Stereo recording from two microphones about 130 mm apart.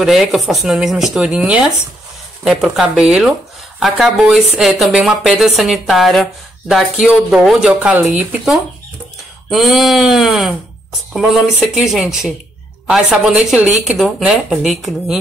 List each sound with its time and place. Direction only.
0.0 s speech: centre (ahead or behind)